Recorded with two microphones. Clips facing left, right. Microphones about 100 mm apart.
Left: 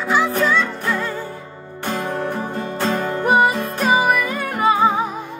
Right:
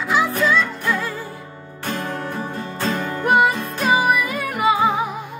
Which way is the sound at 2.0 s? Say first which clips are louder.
Left 3 dB; 30° left (ahead or behind).